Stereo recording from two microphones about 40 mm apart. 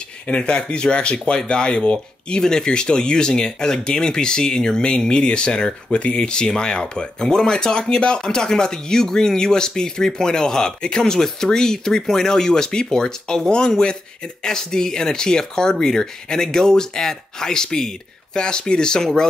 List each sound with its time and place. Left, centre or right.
0.3 s speech: left